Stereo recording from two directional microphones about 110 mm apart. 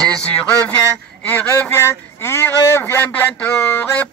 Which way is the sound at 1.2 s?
15° left (ahead or behind).